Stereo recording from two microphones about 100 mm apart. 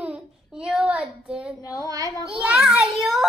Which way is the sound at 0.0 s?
10° right (ahead or behind).